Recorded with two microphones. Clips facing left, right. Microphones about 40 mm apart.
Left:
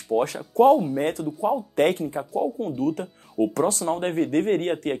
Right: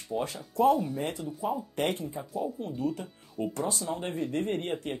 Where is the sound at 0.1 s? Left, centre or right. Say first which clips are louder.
Left 9 dB; left.